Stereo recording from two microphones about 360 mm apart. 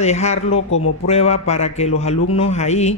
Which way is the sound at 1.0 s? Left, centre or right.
Centre.